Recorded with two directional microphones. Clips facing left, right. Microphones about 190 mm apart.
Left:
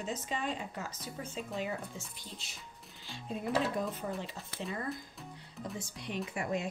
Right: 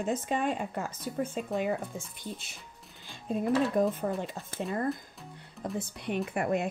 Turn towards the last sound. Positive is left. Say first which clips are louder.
# right 6 dB
turn(degrees=-55)  # may be behind; listen again after turning